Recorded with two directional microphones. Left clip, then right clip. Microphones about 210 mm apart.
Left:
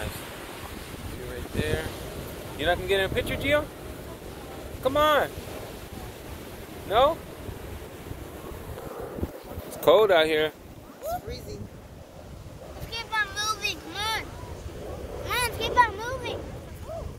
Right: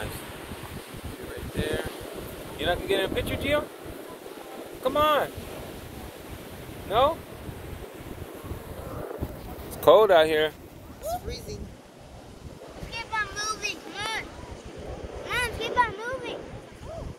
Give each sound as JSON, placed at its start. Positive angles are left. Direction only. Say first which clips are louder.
{"t": 2.6, "sound": "speech", "louder": "left 1 dB", "side_deg": -5}
{"t": 4.8, "sound": "speech", "louder": "left 1 dB", "side_deg": -5}
{"t": 6.9, "sound": "speech", "louder": "left 1 dB", "side_deg": -5}
{"t": 9.8, "sound": "speech", "louder": "right 2 dB", "side_deg": 0}
{"t": 12.9, "sound": "a sound", "louder": "left 2 dB", "side_deg": 55}
{"t": 15.2, "sound": "vehicle", "louder": "left 1 dB", "side_deg": 70}